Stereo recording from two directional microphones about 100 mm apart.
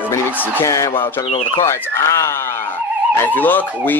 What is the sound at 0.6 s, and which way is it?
Speech, 30° left (ahead or behind).